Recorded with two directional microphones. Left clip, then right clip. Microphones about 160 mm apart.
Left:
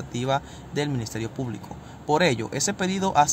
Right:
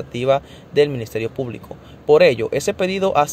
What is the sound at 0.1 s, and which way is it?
Speech, 15° right (ahead or behind).